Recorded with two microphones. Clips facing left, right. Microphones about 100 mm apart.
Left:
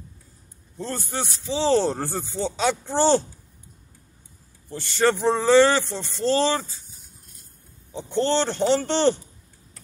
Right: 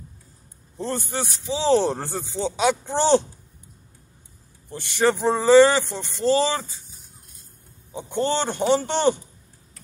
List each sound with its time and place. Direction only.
0.7 s a man's voice: 20° right (ahead or behind)
4.6 s speech: 15° right (ahead or behind)
7.9 s speech: 15° right (ahead or behind)